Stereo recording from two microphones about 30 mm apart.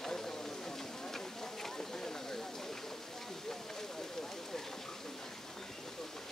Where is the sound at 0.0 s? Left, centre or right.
Centre.